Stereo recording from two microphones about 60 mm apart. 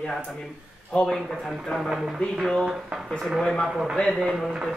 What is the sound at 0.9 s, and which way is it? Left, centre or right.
Speech, centre.